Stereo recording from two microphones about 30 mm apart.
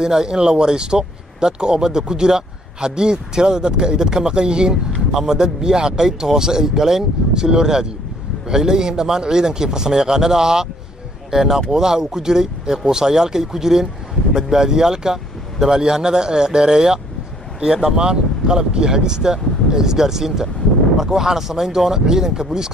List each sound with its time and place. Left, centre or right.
0.0 s speech: right